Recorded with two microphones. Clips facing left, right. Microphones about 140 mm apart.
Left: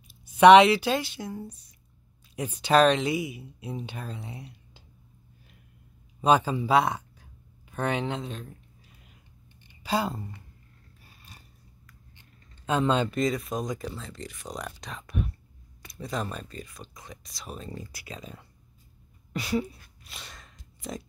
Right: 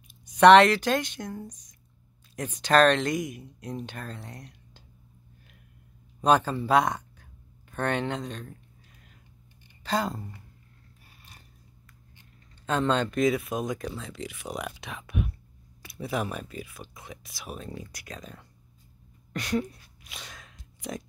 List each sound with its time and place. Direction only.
0.2 s speech: 10° left (ahead or behind)
6.2 s speech: 10° left (ahead or behind)
9.8 s speech: 5° left (ahead or behind)
12.6 s speech: 10° left (ahead or behind)
19.3 s a sound: 5° left (ahead or behind)